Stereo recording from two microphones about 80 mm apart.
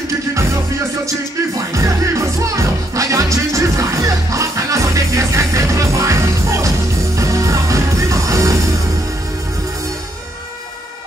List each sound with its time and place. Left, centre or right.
1.7 s music: right